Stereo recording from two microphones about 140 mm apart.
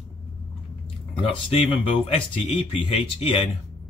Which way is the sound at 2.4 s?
45° left (ahead or behind).